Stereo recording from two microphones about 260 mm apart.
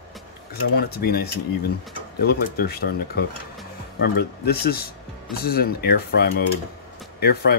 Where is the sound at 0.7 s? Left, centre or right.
Left.